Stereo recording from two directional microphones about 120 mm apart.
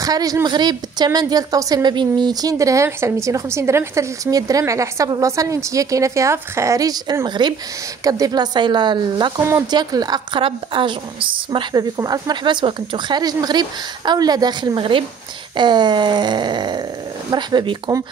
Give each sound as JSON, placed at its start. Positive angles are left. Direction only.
{"t": 0.0, "sound": "a woman's voice", "side_deg": -30}
{"t": 9.4, "sound": "a woman's voice", "side_deg": -25}
{"t": 9.7, "sound": "speech", "side_deg": -35}
{"t": 10.4, "sound": "a woman's voice", "side_deg": -45}
{"t": 12.0, "sound": "speech", "side_deg": -35}